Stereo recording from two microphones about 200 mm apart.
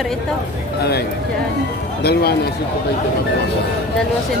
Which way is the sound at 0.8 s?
55° left (ahead or behind).